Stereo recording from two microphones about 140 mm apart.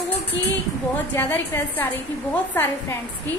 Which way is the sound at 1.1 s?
15° left (ahead or behind).